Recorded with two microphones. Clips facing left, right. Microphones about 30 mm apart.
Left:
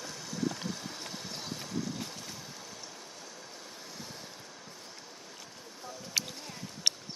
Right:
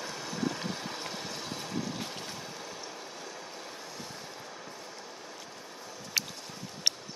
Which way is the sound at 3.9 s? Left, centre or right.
Centre.